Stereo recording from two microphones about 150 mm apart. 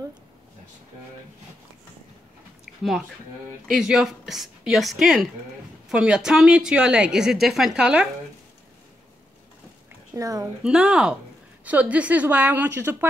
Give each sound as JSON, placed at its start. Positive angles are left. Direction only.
{"t": 3.6, "sound": "a woman's voice", "side_deg": -5}
{"t": 10.1, "sound": "a child's voice", "side_deg": -20}
{"t": 10.6, "sound": "a woman's voice", "side_deg": -5}